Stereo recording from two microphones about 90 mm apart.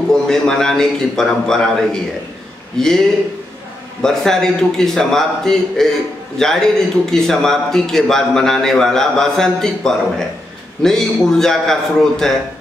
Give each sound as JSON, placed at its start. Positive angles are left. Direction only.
{"t": 0.1, "sound": "a man's voice", "side_deg": 5}
{"t": 4.0, "sound": "a man's voice", "side_deg": 5}